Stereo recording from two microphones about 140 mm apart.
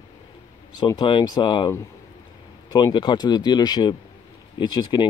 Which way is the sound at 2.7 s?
30° left (ahead or behind).